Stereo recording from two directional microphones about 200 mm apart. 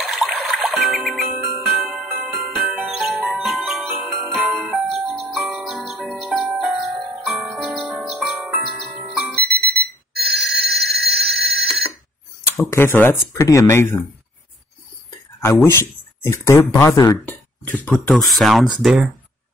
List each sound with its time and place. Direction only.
0.0 s music: centre (ahead or behind)
10.1 s a sound: 55° right (ahead or behind)
12.6 s speech: 10° left (ahead or behind)
15.0 s speech: 10° left (ahead or behind)